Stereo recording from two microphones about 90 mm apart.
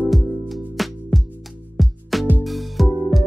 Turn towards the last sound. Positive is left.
turn(degrees=0)  # may be behind; listen again after turning